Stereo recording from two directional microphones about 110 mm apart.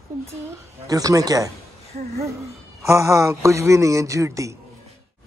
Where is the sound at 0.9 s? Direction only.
30° right (ahead or behind).